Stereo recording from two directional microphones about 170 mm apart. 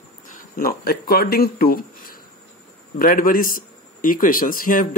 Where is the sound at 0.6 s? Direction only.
65° left (ahead or behind).